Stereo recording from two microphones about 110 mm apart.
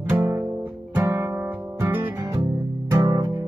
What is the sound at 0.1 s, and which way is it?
Music, 25° right (ahead or behind).